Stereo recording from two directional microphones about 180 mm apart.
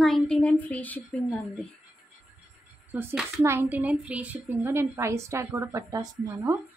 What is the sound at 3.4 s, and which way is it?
A woman's voice, 15° right (ahead or behind).